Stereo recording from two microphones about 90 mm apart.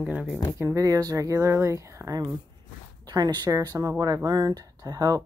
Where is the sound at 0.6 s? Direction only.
35° right (ahead or behind).